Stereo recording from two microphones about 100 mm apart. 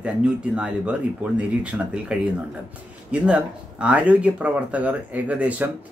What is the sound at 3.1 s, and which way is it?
Speech, 10° right (ahead or behind).